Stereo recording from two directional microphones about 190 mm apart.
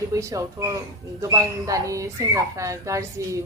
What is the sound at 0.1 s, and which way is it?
Speech, 15° right (ahead or behind).